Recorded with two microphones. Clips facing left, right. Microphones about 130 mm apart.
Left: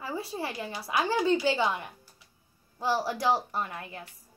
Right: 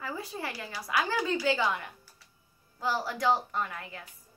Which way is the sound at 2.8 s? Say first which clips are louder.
Left 2 dB; 35° left (ahead or behind).